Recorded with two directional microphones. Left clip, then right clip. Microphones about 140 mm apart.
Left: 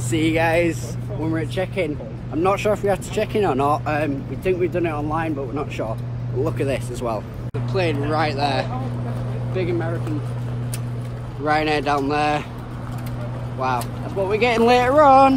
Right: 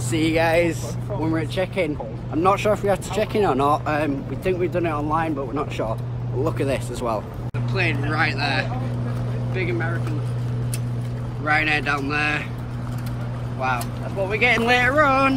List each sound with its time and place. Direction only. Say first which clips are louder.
0.1 s speech: even; centre (ahead or behind)
7.7 s speech: left 2 dB; 20° left (ahead or behind)
11.4 s speech: left 1 dB; 20° left (ahead or behind)
14.3 s speech: left 2 dB; 35° left (ahead or behind)